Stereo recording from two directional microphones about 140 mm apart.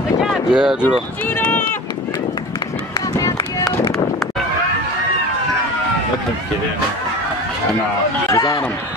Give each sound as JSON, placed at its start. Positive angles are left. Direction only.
{"t": 0.2, "sound": "a sound", "side_deg": -5}
{"t": 1.2, "sound": "run", "side_deg": 15}
{"t": 3.2, "sound": "run", "side_deg": 25}
{"t": 8.3, "sound": "speech", "side_deg": 25}